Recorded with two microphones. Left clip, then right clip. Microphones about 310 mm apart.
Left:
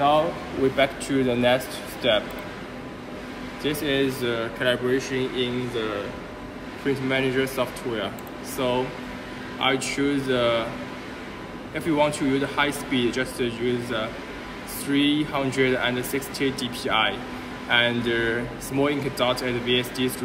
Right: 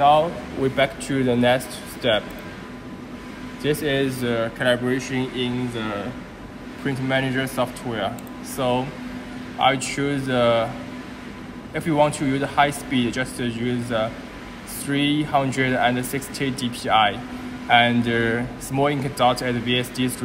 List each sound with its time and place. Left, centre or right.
0.7 s a man's voice: right
3.6 s a man's voice: centre
7.1 s a man's voice: right
11.7 s a man's voice: centre